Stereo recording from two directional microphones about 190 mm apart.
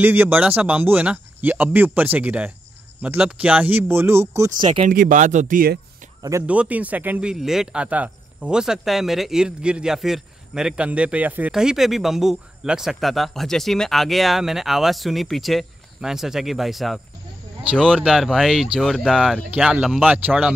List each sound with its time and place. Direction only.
0.0 s speech: 10° right (ahead or behind)
4.8 s speech: 45° right (ahead or behind)
6.4 s speech: 5° right (ahead or behind)